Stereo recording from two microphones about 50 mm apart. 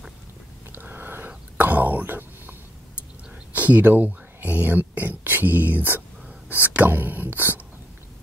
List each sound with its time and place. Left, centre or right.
0.7 s whispering: right
3.5 s speech: right